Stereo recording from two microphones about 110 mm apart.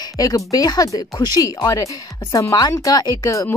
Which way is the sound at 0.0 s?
35° left (ahead or behind).